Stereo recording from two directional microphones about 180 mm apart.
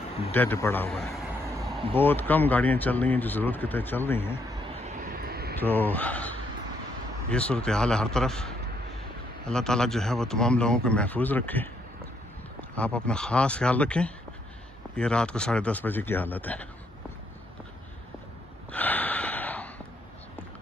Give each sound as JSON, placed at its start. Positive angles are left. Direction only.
{"t": 0.3, "sound": "a sound", "side_deg": 10}
{"t": 2.0, "sound": "speech", "side_deg": 10}
{"t": 4.8, "sound": "vehicle", "side_deg": -45}
{"t": 5.6, "sound": "a man's voice", "side_deg": 10}
{"t": 12.7, "sound": "speech", "side_deg": 5}
{"t": 18.7, "sound": "gasp", "side_deg": 10}